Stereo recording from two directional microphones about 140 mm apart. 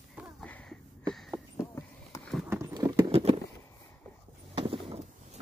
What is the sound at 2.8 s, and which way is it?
Horse, 25° right (ahead or behind).